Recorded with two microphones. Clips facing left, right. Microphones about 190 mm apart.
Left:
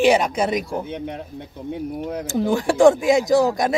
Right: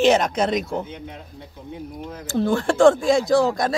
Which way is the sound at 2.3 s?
15° left (ahead or behind).